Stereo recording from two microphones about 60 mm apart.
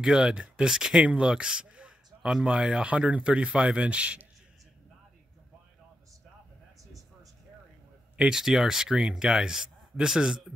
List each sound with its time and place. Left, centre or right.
0.0 s speech: centre
8.2 s speech: centre